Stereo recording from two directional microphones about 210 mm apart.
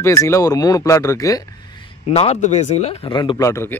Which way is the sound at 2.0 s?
30° left (ahead or behind).